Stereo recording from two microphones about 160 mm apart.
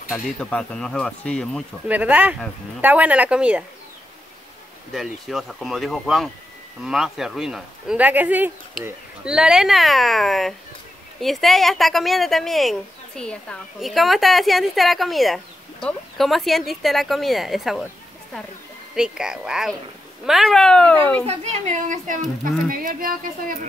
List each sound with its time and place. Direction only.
0.1 s a woman's voice: 5° left (ahead or behind)
1.9 s a woman's voice: 10° right (ahead or behind)
4.9 s a woman's voice: centre (ahead or behind)
18.9 s a woman's voice: 5° right (ahead or behind)
21.3 s speech: 40° right (ahead or behind); by 23.6 s 65° right (ahead or behind)